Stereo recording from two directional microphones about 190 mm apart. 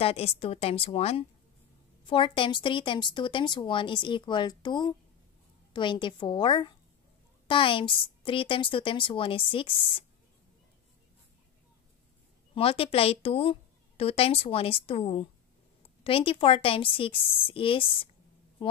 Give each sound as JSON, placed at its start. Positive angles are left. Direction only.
{"t": 0.0, "sound": "a woman's voice", "side_deg": 30}
{"t": 12.5, "sound": "a woman's voice", "side_deg": 30}